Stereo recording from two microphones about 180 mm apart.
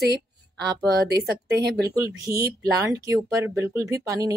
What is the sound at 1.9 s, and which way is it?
Speech, 15° right (ahead or behind).